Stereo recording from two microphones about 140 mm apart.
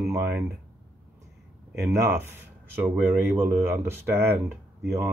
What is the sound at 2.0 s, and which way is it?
Speech, 20° right (ahead or behind).